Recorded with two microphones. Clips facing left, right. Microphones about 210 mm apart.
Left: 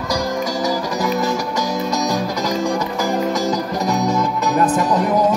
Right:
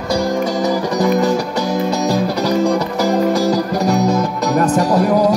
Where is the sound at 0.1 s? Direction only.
60° right (ahead or behind).